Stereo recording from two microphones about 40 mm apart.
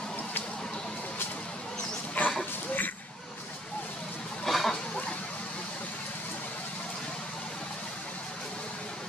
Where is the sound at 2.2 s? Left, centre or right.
Left.